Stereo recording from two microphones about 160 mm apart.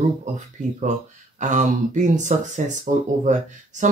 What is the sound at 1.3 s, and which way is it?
Speech, 50° right (ahead or behind).